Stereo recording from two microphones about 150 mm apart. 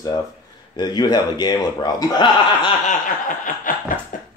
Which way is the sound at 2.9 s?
60° left (ahead or behind).